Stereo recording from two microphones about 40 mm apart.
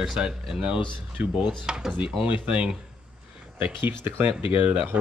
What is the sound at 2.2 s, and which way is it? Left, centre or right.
Speech, right.